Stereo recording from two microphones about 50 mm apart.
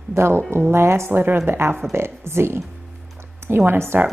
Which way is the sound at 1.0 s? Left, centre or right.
Right.